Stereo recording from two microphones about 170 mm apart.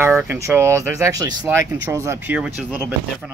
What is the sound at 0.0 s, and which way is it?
Speech, 15° right (ahead or behind).